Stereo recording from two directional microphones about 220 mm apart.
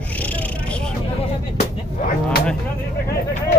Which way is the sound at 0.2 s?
5° left (ahead or behind).